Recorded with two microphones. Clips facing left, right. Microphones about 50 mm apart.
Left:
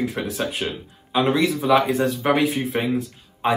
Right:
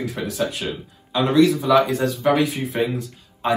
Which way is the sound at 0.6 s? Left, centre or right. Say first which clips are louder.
Left 1 dB; centre.